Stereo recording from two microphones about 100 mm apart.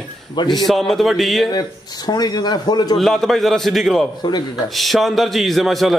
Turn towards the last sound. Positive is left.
turn(degrees=0)  # may be behind; listen again after turning